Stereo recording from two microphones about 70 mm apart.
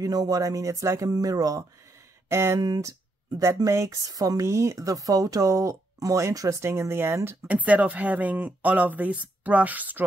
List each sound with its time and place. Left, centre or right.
0.0 s speech: right
2.2 s speech: right
3.7 s speech: right
4.0 s speech: right
6.6 s speech: right
7.4 s speech: right